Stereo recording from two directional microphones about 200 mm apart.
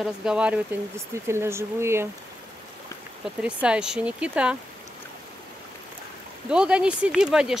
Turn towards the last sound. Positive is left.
turn(degrees=-5)  # may be behind; listen again after turning